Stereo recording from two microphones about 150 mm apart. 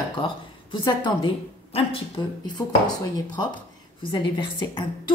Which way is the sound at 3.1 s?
30° left (ahead or behind).